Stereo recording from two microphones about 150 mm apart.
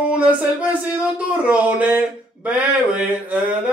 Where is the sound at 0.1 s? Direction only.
10° right (ahead or behind).